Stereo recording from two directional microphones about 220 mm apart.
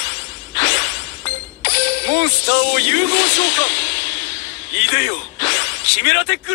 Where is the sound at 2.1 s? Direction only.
55° left (ahead or behind).